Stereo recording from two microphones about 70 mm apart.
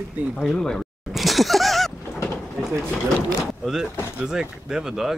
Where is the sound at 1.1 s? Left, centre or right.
Centre.